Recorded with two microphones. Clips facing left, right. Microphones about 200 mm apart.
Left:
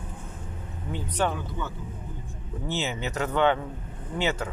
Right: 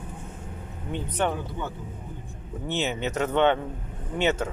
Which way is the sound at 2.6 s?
20° right (ahead or behind).